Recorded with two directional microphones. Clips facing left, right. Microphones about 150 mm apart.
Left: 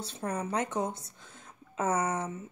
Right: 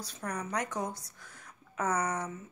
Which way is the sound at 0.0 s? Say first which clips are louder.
Left 4 dB; 25° left (ahead or behind).